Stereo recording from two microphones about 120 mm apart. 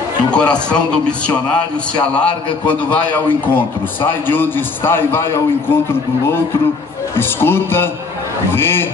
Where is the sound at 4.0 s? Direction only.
15° left (ahead or behind).